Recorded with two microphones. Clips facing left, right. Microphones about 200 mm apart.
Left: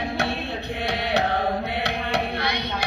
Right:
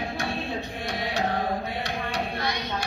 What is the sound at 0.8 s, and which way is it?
Music, 65° left (ahead or behind).